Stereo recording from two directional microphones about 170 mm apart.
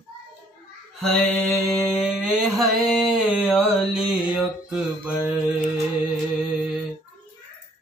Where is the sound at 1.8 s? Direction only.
Centre (ahead or behind).